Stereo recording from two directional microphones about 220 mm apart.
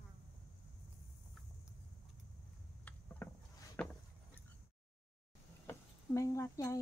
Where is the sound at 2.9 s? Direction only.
5° left (ahead or behind).